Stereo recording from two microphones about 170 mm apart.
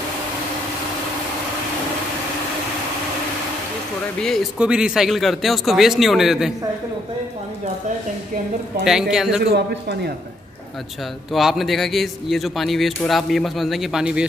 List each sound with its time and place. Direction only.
4.2 s a man's voice: centre (ahead or behind)
9.1 s a man's voice: 5° right (ahead or behind)
9.5 s a man's voice: 75° right (ahead or behind)
11.3 s a man's voice: centre (ahead or behind)